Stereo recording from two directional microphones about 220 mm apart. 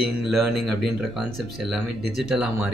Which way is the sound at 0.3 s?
Centre (ahead or behind).